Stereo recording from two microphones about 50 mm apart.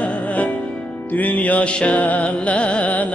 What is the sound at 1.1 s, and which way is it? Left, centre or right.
Music, left.